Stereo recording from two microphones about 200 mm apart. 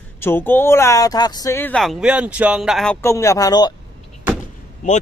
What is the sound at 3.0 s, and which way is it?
Speech, 15° left (ahead or behind).